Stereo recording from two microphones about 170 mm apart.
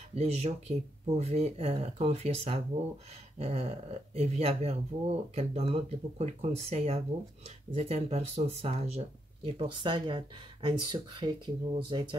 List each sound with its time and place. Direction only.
0.1 s speech: 40° right (ahead or behind)